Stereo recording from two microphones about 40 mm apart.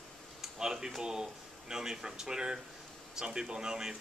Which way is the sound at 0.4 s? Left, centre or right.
Centre.